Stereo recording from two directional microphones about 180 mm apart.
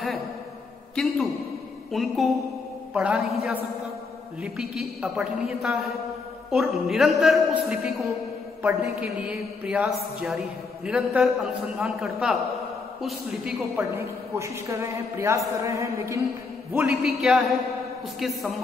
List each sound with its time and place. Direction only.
0.9 s a woman's voice: centre (ahead or behind)
13.7 s a man's voice: 15° right (ahead or behind)
16.7 s a woman's voice: 5° right (ahead or behind)